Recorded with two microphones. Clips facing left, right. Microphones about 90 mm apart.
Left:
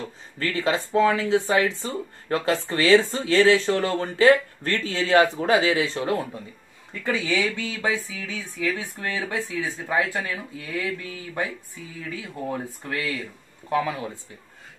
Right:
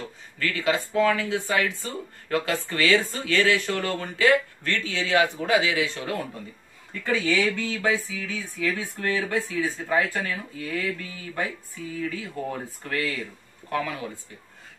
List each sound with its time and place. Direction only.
0.4 s speech: 30° left (ahead or behind)